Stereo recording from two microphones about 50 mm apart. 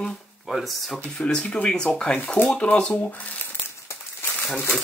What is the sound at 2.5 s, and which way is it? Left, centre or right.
Speech, left.